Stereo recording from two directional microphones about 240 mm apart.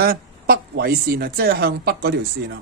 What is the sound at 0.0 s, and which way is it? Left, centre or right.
Speech, right.